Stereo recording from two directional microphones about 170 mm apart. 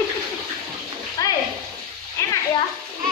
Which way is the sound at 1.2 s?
20° left (ahead or behind).